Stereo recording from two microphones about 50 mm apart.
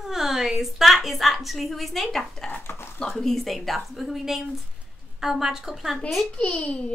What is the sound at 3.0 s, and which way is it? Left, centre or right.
A woman's voice, centre.